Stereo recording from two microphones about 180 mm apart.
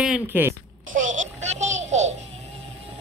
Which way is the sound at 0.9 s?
45° right (ahead or behind).